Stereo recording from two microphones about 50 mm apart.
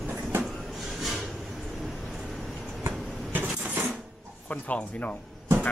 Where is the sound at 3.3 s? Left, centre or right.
Right.